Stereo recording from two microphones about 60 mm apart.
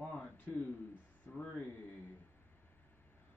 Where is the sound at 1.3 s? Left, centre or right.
Left.